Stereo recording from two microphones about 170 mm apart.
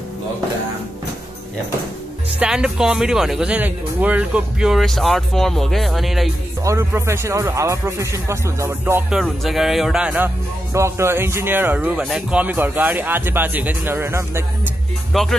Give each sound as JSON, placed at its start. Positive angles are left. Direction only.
{"t": 2.3, "sound": "speech", "side_deg": -5}
{"t": 6.6, "sound": "speech", "side_deg": -15}
{"t": 9.1, "sound": "speech", "side_deg": 0}
{"t": 15.1, "sound": "speech", "side_deg": 0}